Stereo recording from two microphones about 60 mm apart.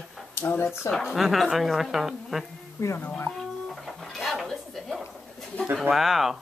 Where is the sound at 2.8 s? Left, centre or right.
Left.